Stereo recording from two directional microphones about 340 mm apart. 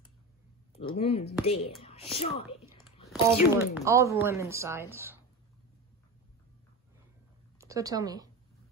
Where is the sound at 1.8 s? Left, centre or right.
Centre.